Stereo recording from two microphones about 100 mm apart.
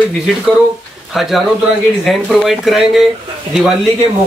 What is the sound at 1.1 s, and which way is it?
A man's voice, centre (ahead or behind).